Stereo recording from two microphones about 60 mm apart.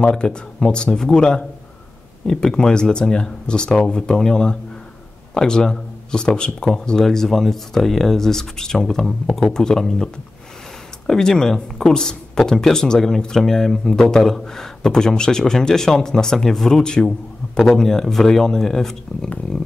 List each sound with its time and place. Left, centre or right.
0.0 s speech: centre
11.1 s speech: centre
19.2 s speech: centre